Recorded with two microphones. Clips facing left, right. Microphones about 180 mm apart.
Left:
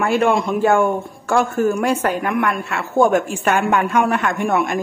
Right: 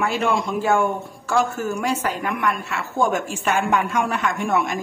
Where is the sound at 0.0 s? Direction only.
55° left (ahead or behind).